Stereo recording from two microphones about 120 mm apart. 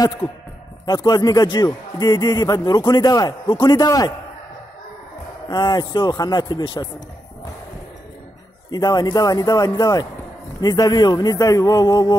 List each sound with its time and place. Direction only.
0.8 s a man's voice: 35° left (ahead or behind)
5.5 s a man's voice: 35° left (ahead or behind)
8.7 s a man's voice: 35° left (ahead or behind)